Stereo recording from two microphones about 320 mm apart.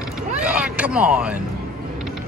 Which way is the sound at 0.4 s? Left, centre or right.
Centre.